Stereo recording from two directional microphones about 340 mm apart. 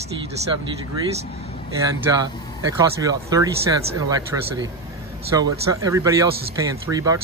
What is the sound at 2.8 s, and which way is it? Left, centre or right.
Speech, centre.